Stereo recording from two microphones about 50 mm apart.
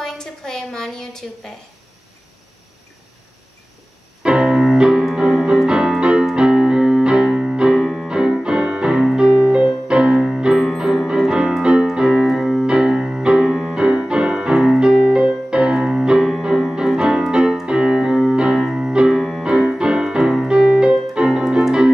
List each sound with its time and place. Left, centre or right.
0.0 s a sound: centre
4.2 s music: centre
5.1 s piano: centre
6.3 s music: centre
7.8 s music: centre
8.1 s piano: centre
9.8 s music: centre
10.2 s piano: centre
10.6 s keyboard: centre
12.6 s music: centre
13.5 s piano: centre
17.6 s keyboard: centre
18.8 s music: centre
19.4 s piano: centre